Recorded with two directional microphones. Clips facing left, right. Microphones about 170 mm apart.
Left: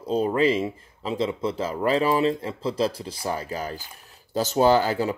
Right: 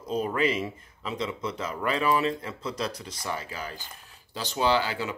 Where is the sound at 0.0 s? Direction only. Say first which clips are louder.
Left 5 dB; 30° left (ahead or behind).